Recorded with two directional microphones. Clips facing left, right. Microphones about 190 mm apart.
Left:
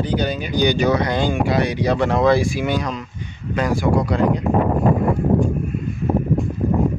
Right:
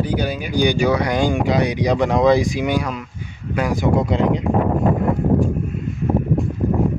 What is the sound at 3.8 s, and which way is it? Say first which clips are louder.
Speech: right 1 dB; 20° right (ahead or behind).